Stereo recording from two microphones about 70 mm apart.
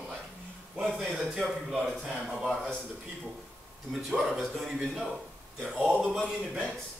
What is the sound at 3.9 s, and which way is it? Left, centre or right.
A man's voice, centre.